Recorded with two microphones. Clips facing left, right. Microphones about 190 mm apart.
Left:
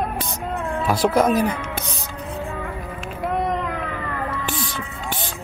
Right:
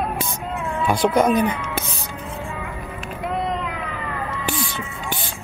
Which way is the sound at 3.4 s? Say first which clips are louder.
Left 2 dB; 50° left (ahead or behind).